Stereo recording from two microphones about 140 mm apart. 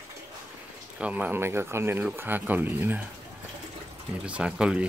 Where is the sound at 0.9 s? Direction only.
10° right (ahead or behind).